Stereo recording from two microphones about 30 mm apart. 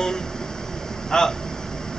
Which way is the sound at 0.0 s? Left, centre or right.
Left.